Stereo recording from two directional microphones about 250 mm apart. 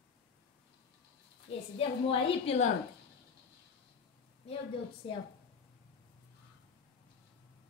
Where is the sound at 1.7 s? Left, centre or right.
Left.